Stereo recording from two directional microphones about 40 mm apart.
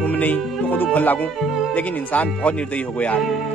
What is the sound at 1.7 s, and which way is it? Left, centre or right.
Speech, left.